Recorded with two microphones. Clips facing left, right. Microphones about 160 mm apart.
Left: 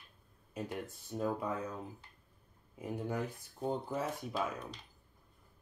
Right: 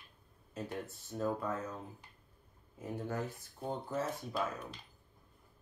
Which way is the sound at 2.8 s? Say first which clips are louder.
Left 1 dB; 15° left (ahead or behind).